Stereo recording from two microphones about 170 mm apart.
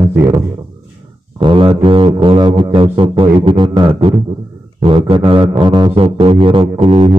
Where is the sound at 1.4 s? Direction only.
30° right (ahead or behind).